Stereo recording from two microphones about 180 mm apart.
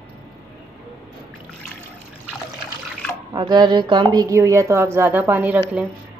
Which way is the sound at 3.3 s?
25° right (ahead or behind).